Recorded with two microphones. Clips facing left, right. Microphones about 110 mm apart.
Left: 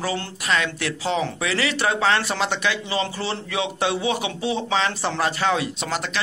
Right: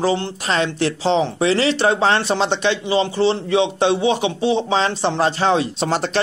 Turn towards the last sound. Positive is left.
turn(degrees=-35)  # may be behind; listen again after turning